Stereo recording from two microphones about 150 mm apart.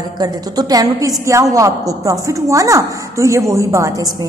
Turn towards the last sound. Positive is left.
turn(degrees=-20)  # may be behind; listen again after turning